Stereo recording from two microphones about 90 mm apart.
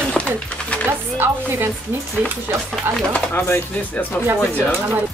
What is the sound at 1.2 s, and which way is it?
Speech, 25° right (ahead or behind).